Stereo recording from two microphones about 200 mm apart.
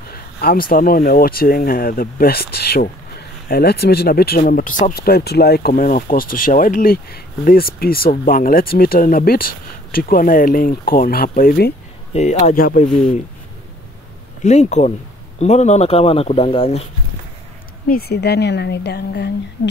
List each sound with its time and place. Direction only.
0.4 s speech: 45° left (ahead or behind)
12.1 s speech: 35° left (ahead or behind)
14.4 s speech: 35° left (ahead or behind)
17.8 s a woman's voice: 50° left (ahead or behind)